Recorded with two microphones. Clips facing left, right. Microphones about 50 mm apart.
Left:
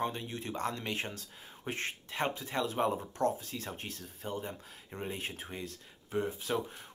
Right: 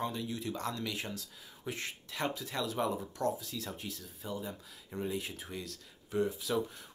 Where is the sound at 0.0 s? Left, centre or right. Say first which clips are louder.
Even; left.